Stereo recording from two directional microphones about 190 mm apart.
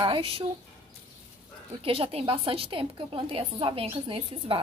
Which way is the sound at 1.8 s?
30° right (ahead or behind).